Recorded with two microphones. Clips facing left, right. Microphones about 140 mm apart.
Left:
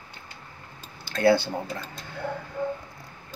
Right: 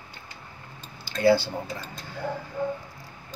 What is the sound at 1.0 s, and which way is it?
Typing, 55° left (ahead or behind).